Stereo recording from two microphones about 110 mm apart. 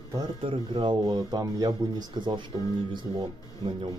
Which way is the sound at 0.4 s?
50° right (ahead or behind).